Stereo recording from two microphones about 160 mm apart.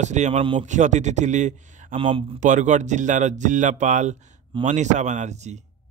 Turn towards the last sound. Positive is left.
turn(degrees=-45)  # may be behind; listen again after turning